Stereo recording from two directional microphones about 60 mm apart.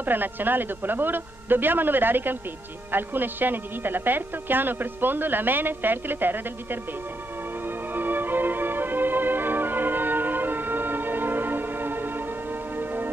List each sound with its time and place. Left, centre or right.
0.0 s a man's voice: right
7.6 s music: right